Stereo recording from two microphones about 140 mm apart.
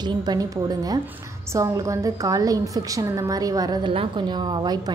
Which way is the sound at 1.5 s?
25° right (ahead or behind).